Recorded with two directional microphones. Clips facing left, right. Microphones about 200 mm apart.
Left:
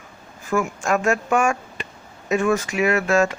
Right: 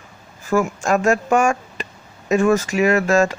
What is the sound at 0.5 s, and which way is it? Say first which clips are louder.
Speech: right 3 dB; 35° right (ahead or behind).